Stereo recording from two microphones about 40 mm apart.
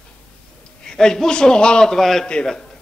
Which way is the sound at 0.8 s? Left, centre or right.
Centre.